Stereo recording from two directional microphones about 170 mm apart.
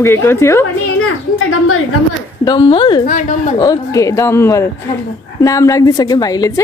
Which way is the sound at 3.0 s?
50° left (ahead or behind).